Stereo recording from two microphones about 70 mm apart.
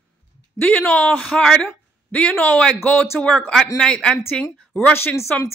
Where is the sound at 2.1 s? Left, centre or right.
Left.